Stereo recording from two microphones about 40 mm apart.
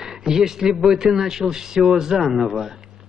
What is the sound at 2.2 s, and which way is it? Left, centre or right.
Speech, centre.